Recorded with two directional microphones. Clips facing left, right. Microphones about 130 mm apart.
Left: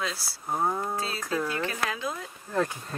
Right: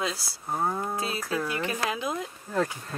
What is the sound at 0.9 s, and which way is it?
Speech, 15° right (ahead or behind).